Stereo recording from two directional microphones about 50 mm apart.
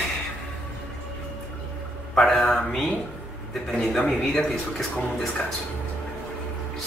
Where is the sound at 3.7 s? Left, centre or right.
Centre.